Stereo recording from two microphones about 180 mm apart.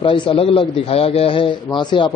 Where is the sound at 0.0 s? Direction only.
30° left (ahead or behind).